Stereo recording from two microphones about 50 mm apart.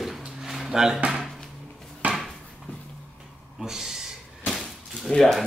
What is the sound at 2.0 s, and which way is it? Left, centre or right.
Dishes, right.